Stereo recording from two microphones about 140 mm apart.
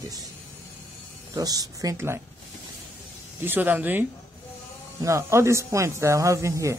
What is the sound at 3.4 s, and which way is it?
Speech, 15° right (ahead or behind).